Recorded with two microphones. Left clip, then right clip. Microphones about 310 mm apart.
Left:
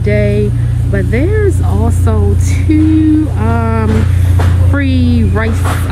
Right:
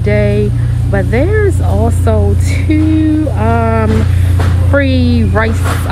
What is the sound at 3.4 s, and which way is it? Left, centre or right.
Speech, centre.